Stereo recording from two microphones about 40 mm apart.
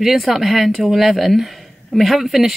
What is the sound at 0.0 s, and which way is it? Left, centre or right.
Speech, centre.